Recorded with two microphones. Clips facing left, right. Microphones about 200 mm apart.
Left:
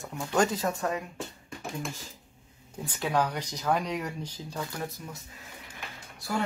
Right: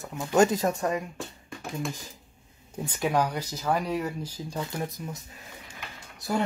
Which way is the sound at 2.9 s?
15° right (ahead or behind).